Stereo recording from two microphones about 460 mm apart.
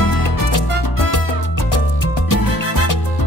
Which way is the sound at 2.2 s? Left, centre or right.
Left.